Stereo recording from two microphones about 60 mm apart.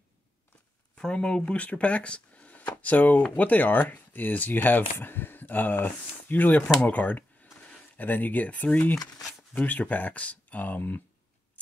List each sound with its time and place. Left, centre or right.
0.9 s speech: centre; by 11.0 s left